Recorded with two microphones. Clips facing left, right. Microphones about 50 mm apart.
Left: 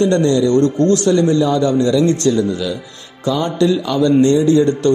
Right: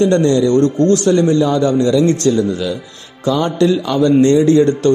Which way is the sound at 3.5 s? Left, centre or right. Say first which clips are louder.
Right 1 dB; right.